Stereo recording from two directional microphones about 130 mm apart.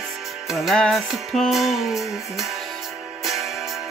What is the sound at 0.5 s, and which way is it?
Music, centre (ahead or behind).